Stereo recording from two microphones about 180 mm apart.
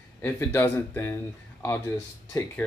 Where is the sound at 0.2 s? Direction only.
15° left (ahead or behind).